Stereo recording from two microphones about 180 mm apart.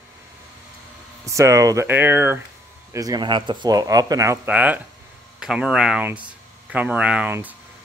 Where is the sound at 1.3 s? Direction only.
15° right (ahead or behind).